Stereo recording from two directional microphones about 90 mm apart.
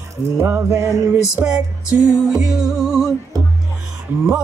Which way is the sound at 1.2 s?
10° right (ahead or behind).